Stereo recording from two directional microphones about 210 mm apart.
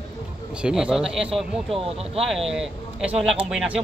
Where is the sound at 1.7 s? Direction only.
30° right (ahead or behind).